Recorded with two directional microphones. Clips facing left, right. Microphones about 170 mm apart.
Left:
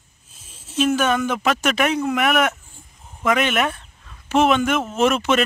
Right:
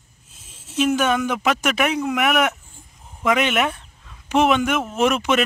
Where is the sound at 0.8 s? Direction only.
15° right (ahead or behind).